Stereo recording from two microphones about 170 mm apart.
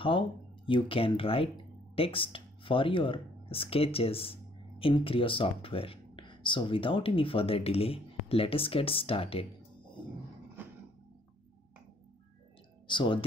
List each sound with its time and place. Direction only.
0.7 s speech: 30° left (ahead or behind)
12.8 s speech: 30° left (ahead or behind)